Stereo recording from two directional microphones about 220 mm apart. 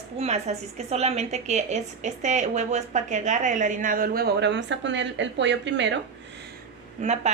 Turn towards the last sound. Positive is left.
turn(degrees=-30)  # may be behind; listen again after turning